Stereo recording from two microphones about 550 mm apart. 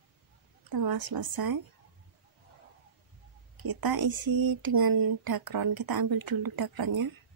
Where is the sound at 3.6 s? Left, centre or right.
Right.